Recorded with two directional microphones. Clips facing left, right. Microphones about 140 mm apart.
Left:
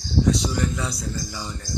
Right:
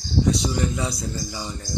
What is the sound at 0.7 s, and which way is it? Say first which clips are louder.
Speech: right 1 dB; 15° right (ahead or behind).